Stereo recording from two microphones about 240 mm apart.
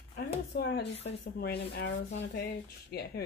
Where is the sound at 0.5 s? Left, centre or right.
Left.